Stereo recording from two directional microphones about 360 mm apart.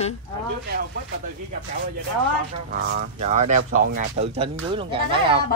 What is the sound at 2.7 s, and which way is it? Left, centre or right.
Speech, right.